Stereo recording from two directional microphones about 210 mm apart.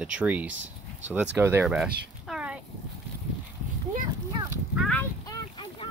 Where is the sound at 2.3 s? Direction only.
5° right (ahead or behind).